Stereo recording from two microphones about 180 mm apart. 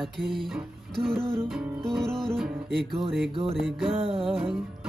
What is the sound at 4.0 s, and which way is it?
Music, 30° right (ahead or behind).